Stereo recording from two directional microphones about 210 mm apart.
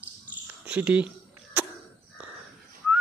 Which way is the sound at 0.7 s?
5° right (ahead or behind).